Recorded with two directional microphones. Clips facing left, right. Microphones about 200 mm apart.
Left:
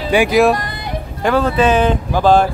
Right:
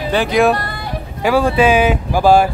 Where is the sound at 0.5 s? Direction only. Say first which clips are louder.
Even; 20° left (ahead or behind).